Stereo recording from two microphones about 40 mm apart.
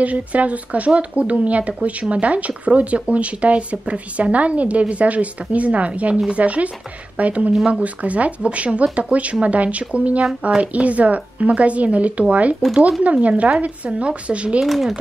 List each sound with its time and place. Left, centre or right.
0.0 s speech: right
14.6 s speech: centre